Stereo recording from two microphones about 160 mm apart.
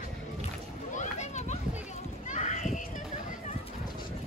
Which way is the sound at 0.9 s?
50° left (ahead or behind).